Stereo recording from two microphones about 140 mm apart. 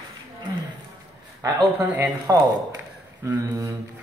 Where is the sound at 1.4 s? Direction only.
10° right (ahead or behind).